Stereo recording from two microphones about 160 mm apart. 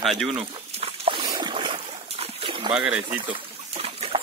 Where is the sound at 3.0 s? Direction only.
30° right (ahead or behind).